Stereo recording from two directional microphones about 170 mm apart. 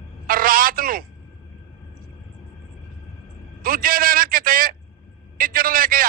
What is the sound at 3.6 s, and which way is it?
A man's voice, 55° right (ahead or behind).